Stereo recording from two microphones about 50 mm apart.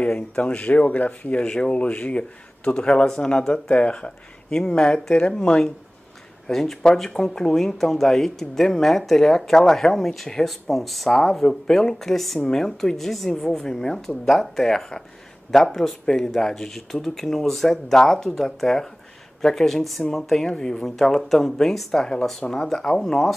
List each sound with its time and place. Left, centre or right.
0.0 s speech: left; by 23.3 s centre